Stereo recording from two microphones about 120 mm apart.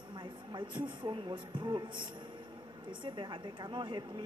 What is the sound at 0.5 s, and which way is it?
A woman's voice, 40° right (ahead or behind).